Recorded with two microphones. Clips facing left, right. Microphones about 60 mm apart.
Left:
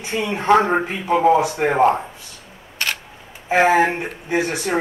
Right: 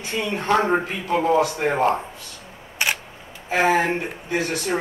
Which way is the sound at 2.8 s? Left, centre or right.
Centre.